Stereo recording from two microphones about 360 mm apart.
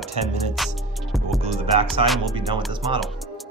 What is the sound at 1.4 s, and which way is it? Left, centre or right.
Music, centre.